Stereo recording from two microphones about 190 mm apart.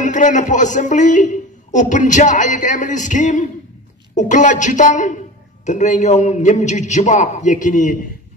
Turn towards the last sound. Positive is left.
turn(degrees=40)  # may be behind; listen again after turning